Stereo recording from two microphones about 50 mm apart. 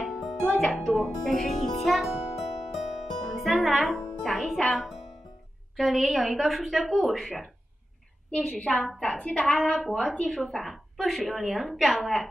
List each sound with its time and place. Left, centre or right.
0.0 s music: centre
0.5 s speech: centre
1.2 s music: centre
4.2 s a woman's voice: centre
9.0 s a woman's voice: centre
9.8 s a woman's voice: centre